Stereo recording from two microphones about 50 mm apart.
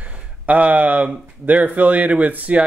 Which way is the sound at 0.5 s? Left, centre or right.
Right.